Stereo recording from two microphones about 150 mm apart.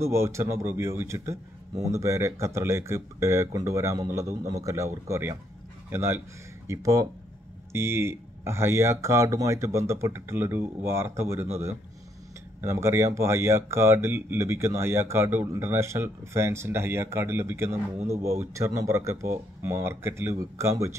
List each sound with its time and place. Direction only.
0.0 s speech: 20° right (ahead or behind)
12.6 s speech: 15° right (ahead or behind)
17.9 s speech: 45° right (ahead or behind)
18.4 s speech: 20° right (ahead or behind)